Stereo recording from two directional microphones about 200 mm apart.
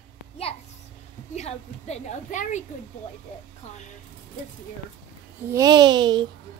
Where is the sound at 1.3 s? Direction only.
35° left (ahead or behind).